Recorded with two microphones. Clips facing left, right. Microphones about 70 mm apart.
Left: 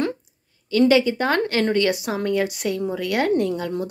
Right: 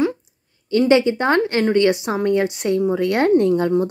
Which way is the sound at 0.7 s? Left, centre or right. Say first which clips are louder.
Right 2 dB; right.